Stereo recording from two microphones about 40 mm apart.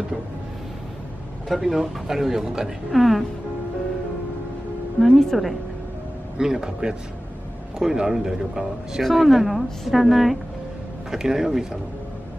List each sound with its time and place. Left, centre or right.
1.5 s speech: centre
2.9 s a woman's voice: centre
5.0 s a woman's voice: centre
6.3 s a woman's voice: centre
11.1 s speech: centre